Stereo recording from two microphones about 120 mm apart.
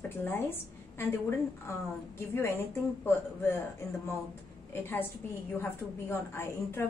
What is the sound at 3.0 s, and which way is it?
Speech, 20° left (ahead or behind).